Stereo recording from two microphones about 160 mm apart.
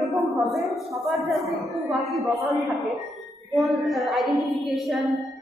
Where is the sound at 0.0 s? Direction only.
Centre (ahead or behind).